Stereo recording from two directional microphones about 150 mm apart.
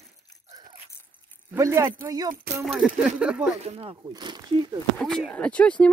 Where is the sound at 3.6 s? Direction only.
40° right (ahead or behind).